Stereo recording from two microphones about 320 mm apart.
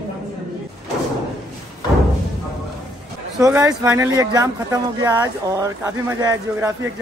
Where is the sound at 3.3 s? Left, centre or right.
Centre.